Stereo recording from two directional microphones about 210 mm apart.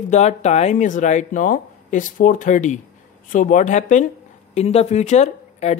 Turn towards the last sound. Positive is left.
turn(degrees=30)  # may be behind; listen again after turning